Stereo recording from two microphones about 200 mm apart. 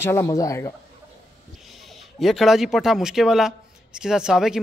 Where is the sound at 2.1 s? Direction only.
Centre (ahead or behind).